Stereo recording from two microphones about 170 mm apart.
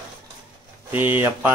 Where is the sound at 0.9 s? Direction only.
10° right (ahead or behind).